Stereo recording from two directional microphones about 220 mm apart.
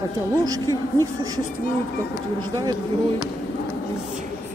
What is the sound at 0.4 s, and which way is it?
Speech, 15° right (ahead or behind).